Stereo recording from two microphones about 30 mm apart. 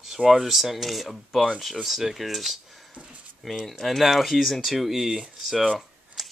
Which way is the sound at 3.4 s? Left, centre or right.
Centre.